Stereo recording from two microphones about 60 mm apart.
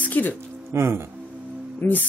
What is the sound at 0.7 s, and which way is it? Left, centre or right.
Speech, right.